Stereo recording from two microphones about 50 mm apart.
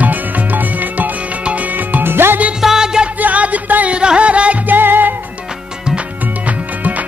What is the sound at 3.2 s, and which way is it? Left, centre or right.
Music, right.